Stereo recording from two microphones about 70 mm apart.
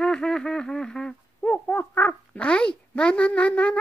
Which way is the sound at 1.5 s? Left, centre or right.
Left.